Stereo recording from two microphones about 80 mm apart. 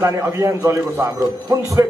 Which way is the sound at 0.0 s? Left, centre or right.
Right.